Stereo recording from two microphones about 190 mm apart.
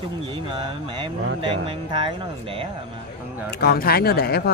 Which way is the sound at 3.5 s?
55° left (ahead or behind).